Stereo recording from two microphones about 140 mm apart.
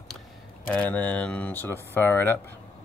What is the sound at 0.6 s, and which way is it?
Speech, 10° left (ahead or behind).